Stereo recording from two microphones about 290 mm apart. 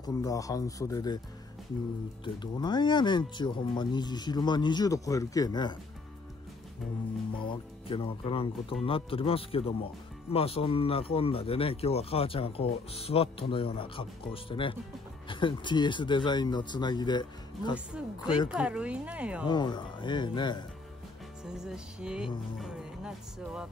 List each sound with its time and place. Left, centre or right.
0.0 s speech: centre
2.2 s speech: centre
7.4 s speech: centre
18.5 s speech: centre
19.4 s speech: centre
21.5 s speech: centre